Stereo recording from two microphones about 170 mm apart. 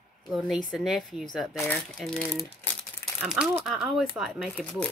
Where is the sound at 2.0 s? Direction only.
5° left (ahead or behind).